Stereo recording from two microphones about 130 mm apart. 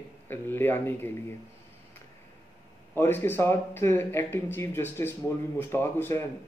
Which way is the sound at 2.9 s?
15° left (ahead or behind).